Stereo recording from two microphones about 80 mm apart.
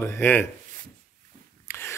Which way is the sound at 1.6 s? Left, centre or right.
Left.